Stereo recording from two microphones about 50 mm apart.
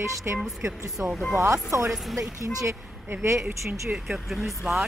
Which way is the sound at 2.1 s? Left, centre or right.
Right.